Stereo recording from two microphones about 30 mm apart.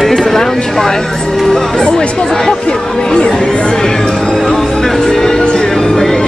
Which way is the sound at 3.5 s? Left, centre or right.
Left.